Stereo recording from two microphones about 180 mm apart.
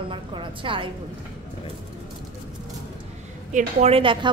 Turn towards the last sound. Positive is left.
turn(degrees=-30)  # may be behind; listen again after turning